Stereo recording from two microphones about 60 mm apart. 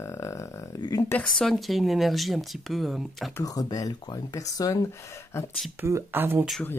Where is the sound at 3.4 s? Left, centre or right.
Left.